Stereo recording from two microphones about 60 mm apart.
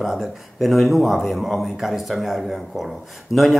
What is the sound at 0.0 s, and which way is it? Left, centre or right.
Speech, centre.